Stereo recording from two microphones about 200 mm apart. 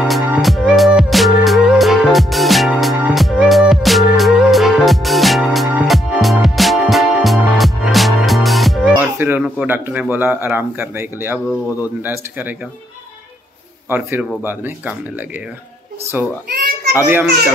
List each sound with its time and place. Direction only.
0.0 s music: centre (ahead or behind)
12.0 s speech: 10° right (ahead or behind)
13.8 s speech: 10° right (ahead or behind)
16.9 s speech: 10° right (ahead or behind)